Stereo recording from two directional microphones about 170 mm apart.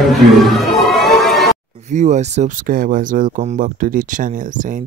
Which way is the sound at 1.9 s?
45° right (ahead or behind).